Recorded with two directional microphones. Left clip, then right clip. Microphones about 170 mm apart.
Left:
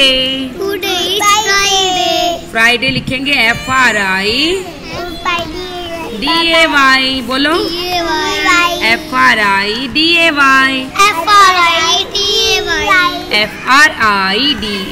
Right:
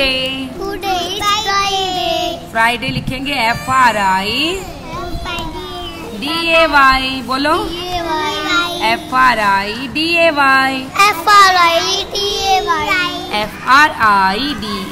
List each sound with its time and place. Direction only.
0.0 s a sound: 15° left (ahead or behind)
0.7 s child singing: 20° right (ahead or behind)
2.2 s child singing: 15° left (ahead or behind)
3.6 s speech: 15° left (ahead or behind)
6.2 s speech: 10° left (ahead or behind)
7.6 s a child's voice: 25° right (ahead or behind)
8.8 s speech: 10° left (ahead or behind)
11.0 s child singing: 55° right (ahead or behind); by 12.8 s 35° right (ahead or behind)
12.8 s speech: 10° left (ahead or behind)